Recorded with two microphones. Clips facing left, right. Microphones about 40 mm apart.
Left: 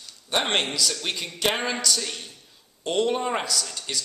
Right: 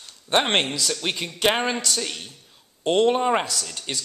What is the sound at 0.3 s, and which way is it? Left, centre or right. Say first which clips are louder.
A man's voice: right 3 dB; right.